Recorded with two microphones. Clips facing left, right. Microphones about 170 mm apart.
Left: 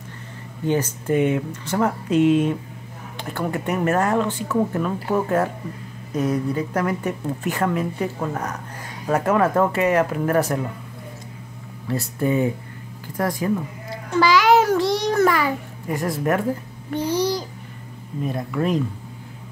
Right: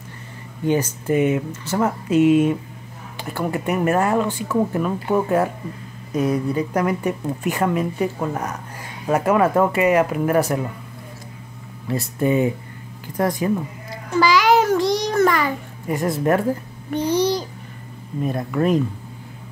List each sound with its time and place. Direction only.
0.7 s speech: 10° right (ahead or behind)
11.9 s speech: 20° right (ahead or behind)
14.1 s a sound: centre (ahead or behind)
15.9 s speech: 25° right (ahead or behind)
18.2 s speech: 50° right (ahead or behind)